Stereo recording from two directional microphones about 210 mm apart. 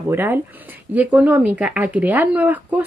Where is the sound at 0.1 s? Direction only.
10° right (ahead or behind).